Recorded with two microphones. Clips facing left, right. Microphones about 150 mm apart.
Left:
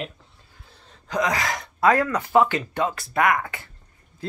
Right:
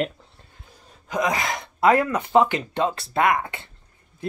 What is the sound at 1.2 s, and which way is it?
Speech, 25° right (ahead or behind).